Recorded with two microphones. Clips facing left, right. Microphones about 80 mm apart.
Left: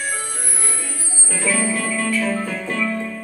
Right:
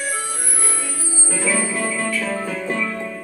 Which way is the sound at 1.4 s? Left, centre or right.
Centre.